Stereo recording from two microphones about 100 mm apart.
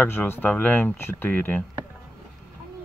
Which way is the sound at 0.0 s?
20° left (ahead or behind).